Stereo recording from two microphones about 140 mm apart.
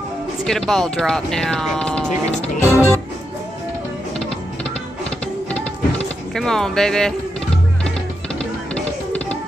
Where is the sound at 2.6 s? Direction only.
20° left (ahead or behind).